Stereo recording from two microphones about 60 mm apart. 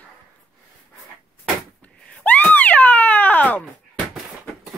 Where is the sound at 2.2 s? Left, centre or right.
Left.